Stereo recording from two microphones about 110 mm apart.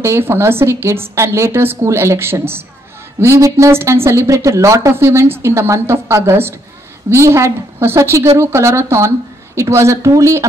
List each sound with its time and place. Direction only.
0.0 s a woman's voice: 25° right (ahead or behind)